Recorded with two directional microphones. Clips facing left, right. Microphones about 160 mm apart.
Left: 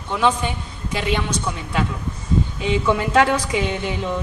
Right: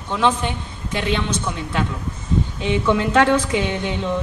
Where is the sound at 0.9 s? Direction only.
10° left (ahead or behind).